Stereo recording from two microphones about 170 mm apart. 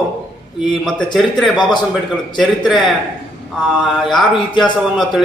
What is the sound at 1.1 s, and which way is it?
A man's voice, centre (ahead or behind).